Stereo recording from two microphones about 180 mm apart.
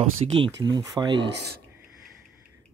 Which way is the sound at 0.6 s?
25° right (ahead or behind).